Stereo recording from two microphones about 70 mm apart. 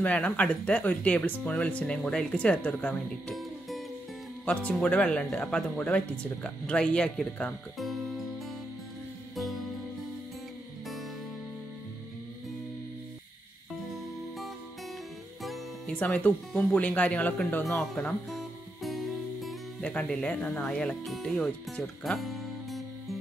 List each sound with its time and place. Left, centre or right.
0.0 s speech: centre
4.5 s speech: left
7.8 s music: centre
9.3 s music: centre
15.9 s speech: left
18.3 s music: centre
19.8 s speech: centre
21.0 s speech: centre
21.8 s music: centre